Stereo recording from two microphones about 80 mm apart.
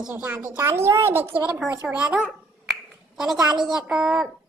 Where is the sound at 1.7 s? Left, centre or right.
Centre.